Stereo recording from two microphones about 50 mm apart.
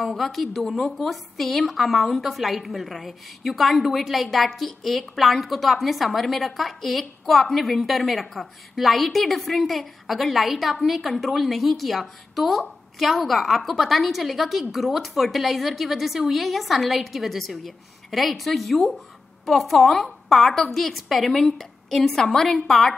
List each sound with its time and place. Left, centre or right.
0.2 s a woman's voice: centre